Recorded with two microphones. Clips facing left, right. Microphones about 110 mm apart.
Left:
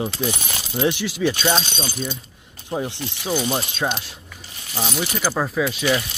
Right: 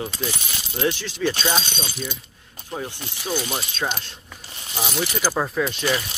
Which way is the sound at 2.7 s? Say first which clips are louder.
Left 5 dB; 15° left (ahead or behind).